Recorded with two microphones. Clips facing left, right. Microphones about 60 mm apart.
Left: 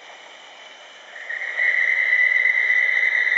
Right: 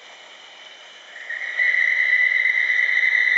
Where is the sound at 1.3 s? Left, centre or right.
Centre.